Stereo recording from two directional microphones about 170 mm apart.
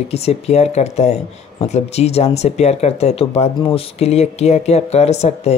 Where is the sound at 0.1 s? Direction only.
35° left (ahead or behind).